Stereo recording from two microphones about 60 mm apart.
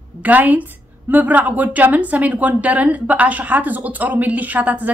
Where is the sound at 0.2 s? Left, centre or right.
Right.